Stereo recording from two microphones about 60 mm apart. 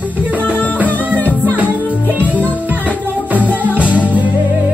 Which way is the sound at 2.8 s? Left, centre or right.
Left.